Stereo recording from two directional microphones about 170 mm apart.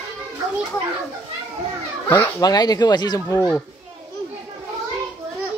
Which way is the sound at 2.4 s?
25° left (ahead or behind).